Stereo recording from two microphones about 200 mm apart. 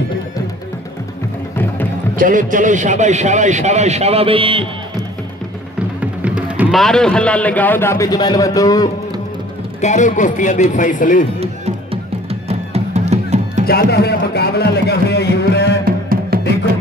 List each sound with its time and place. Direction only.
2.1 s a man's voice: 40° right (ahead or behind)
5.9 s speech: 5° right (ahead or behind); by 8.9 s 15° left (ahead or behind)
9.8 s speech: 35° left (ahead or behind)
11.3 s music: 30° right (ahead or behind)
13.7 s speech: 55° left (ahead or behind)
15.8 s music: 50° right (ahead or behind)